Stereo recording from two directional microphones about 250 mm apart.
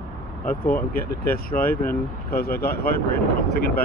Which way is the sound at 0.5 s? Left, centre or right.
Left.